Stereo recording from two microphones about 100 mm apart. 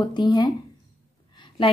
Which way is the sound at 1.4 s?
60° left (ahead or behind).